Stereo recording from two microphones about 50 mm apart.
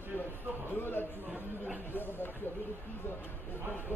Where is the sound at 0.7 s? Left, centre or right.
Left.